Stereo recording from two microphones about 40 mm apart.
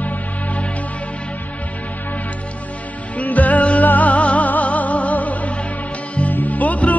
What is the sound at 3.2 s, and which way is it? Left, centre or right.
Music, left.